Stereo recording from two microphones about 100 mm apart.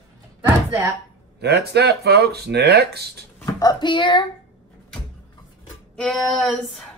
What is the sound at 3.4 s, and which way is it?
Speech, 40° left (ahead or behind).